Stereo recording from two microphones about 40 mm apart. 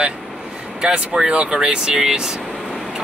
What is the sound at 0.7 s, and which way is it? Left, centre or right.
Speech, right.